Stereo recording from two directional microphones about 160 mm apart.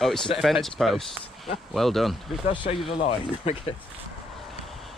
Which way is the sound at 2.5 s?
30° left (ahead or behind).